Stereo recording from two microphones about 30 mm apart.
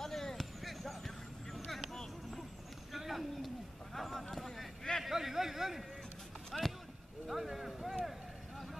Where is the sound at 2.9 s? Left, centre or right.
Centre.